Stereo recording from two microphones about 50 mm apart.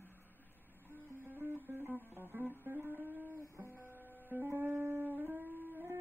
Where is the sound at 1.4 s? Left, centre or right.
Right.